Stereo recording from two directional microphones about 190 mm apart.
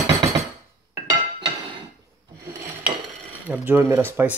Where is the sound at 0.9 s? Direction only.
20° right (ahead or behind).